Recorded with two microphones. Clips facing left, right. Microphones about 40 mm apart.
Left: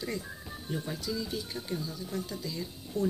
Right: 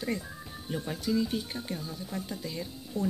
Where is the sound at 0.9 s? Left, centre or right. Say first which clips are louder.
Right 5 dB; right.